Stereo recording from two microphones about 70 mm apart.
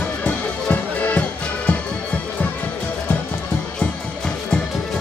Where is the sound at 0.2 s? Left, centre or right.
Left.